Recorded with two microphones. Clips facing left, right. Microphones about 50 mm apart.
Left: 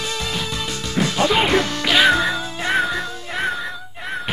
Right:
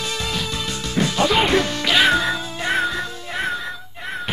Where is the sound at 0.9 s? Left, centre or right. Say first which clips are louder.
Even; centre.